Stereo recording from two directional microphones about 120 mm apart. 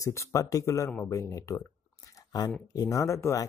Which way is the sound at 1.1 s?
25° left (ahead or behind).